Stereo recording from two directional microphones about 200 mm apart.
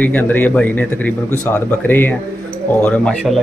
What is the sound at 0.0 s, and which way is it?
Speech, 10° left (ahead or behind).